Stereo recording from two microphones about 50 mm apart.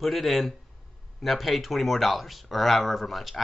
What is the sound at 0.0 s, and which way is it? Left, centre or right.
Speech, centre.